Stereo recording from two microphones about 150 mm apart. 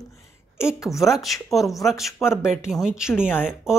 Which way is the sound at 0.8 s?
Centre (ahead or behind).